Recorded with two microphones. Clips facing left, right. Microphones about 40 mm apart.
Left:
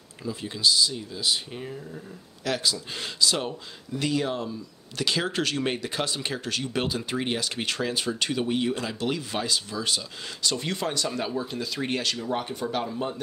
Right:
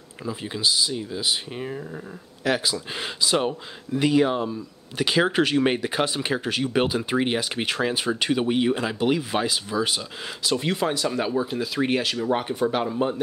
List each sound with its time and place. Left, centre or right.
0.2 s speech: right